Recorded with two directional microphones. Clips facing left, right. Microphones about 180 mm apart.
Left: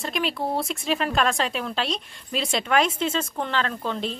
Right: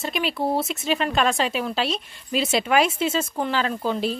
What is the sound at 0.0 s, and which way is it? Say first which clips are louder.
A woman's voice: right 2 dB; centre (ahead or behind).